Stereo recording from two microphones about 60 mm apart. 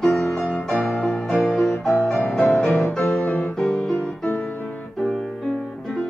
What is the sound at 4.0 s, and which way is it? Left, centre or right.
Music, centre.